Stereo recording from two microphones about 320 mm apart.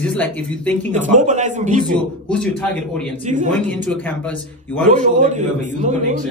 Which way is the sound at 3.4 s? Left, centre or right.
Centre.